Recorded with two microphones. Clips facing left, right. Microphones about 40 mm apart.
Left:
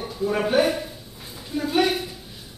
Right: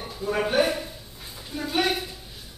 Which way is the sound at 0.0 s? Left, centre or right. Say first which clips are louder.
Left 3 dB; centre.